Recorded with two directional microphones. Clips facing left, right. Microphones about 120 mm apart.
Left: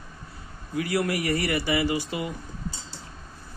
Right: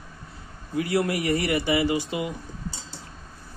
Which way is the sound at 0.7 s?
25° right (ahead or behind).